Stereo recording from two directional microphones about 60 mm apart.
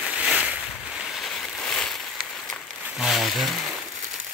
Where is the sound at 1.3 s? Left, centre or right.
Centre.